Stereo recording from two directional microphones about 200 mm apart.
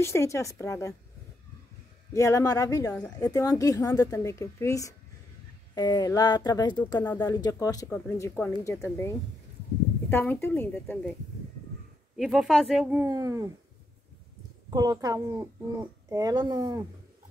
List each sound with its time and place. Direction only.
0.0 s a woman's voice: 15° left (ahead or behind)
2.1 s a woman's voice: 15° left (ahead or behind)
12.2 s speech: centre (ahead or behind)
13.0 s a child's voice: 15° right (ahead or behind)
14.7 s a child's voice: 20° right (ahead or behind)